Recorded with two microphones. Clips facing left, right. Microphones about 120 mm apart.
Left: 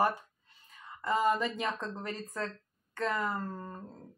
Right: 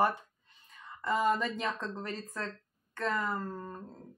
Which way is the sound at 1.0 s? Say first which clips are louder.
Left 1 dB; 10° left (ahead or behind).